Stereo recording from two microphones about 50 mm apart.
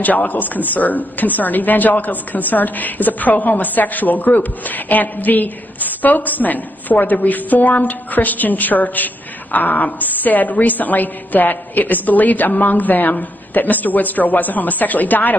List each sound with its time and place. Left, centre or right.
0.0 s a woman's voice: left